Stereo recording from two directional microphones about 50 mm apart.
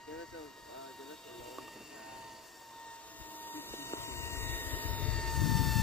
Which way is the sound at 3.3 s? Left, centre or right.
Left.